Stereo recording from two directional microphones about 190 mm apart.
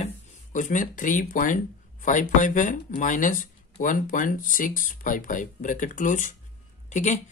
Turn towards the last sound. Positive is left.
turn(degrees=40)  # may be behind; listen again after turning